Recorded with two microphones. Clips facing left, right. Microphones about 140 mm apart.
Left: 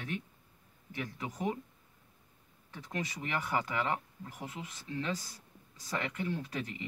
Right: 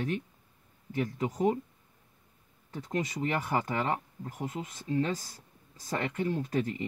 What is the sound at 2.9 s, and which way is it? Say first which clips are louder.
Speech: right 6 dB; 40° right (ahead or behind).